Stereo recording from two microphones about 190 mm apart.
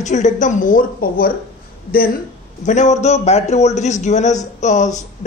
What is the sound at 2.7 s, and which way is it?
A man's voice, 40° left (ahead or behind).